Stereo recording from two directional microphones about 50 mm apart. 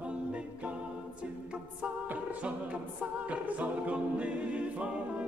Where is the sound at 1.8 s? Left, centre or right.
Right.